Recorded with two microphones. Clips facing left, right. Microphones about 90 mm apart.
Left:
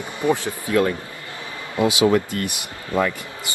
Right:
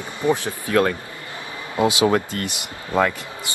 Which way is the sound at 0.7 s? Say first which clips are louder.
Right 1 dB; 60° right (ahead or behind).